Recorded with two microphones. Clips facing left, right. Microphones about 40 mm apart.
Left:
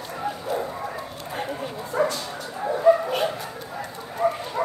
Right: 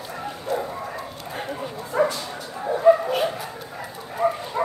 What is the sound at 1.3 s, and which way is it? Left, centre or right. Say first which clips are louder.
Dog: left 1 dB; centre.